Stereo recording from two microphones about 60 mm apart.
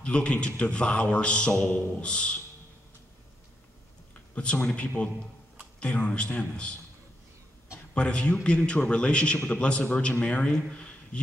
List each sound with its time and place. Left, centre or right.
0.0 s a man's voice: centre
1.6 s a man's voice: left
4.4 s a man's voice: centre
7.9 s a man's voice: centre